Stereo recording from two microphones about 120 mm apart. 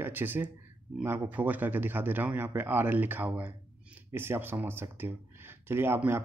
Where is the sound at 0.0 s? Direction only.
15° right (ahead or behind).